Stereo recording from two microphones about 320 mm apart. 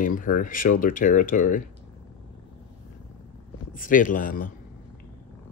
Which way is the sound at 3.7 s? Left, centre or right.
Left.